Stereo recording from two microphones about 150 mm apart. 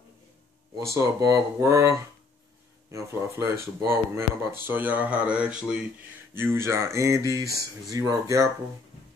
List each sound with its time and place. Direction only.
0.7 s speech: 20° right (ahead or behind)